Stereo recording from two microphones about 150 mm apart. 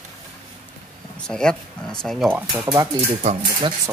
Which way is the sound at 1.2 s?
5° left (ahead or behind).